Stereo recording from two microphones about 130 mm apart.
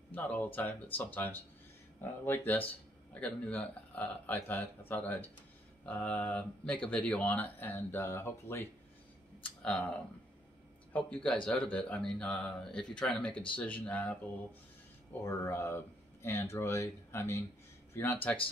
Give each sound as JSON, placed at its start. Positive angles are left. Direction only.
{"t": 0.1, "sound": "speech", "side_deg": 15}
{"t": 9.4, "sound": "speech", "side_deg": 5}
{"t": 15.2, "sound": "speech", "side_deg": 20}